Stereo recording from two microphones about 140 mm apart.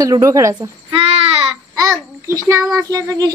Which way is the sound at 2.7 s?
25° right (ahead or behind).